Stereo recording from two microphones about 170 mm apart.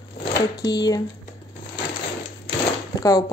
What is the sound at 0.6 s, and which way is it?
Speech, 25° left (ahead or behind).